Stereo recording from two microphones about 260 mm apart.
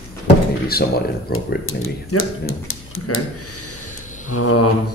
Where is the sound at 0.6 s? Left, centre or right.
Left.